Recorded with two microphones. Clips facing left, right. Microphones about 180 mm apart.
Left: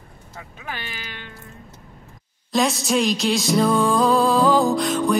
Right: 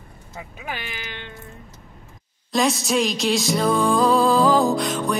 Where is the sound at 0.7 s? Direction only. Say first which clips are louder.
Right 1 dB; 15° right (ahead or behind).